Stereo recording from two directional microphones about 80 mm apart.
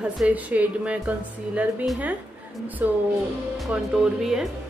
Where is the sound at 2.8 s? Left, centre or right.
Right.